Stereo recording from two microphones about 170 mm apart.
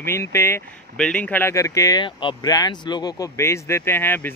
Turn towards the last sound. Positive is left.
turn(degrees=10)  # may be behind; listen again after turning